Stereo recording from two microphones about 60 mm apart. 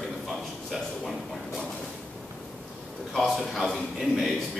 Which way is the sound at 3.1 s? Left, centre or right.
Centre.